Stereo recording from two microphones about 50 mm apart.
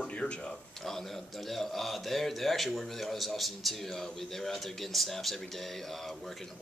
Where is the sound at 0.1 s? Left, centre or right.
Left.